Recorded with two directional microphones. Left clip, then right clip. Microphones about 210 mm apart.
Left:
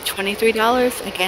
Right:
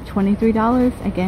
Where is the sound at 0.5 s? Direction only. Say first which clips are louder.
Left 1 dB; 10° left (ahead or behind).